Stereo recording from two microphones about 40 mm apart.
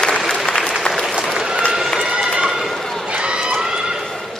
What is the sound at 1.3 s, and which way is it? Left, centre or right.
Run, centre.